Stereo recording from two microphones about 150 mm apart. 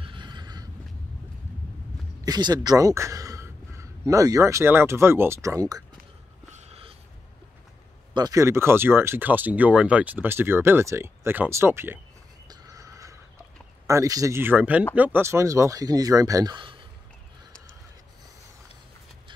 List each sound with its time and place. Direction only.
0.0 s neigh: 30° right (ahead or behind)
2.2 s speech: 25° right (ahead or behind)
6.5 s a sound: 45° right (ahead or behind)
8.1 s speech: 25° right (ahead or behind)
12.4 s neigh: 20° right (ahead or behind)
13.8 s speech: 20° right (ahead or behind)